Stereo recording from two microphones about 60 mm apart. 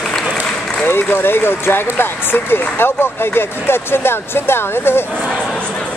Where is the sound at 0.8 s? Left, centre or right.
Left.